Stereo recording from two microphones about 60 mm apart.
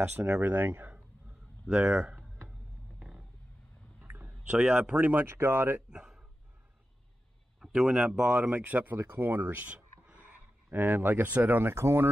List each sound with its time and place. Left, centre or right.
0.0 s speech: right
1.7 s speech: centre
3.0 s vehicle: centre
4.1 s a sound: right
4.4 s speech: right
5.2 s speech: right
5.9 s a sound: centre
7.6 s a sound: centre
8.3 s speech: right
11.7 s speech: right